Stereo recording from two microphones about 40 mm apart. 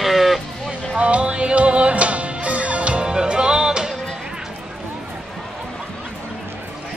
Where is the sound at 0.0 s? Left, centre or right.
Centre.